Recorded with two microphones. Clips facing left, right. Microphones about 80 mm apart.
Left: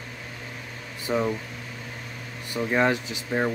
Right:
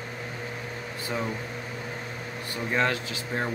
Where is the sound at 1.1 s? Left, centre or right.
Left.